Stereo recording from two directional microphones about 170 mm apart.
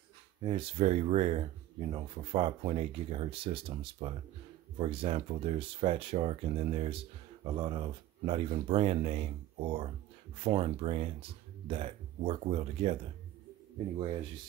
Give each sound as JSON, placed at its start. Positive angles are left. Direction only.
{"t": 0.4, "sound": "speech", "side_deg": -30}